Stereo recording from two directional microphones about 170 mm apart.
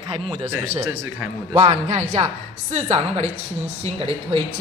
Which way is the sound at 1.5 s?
40° right (ahead or behind).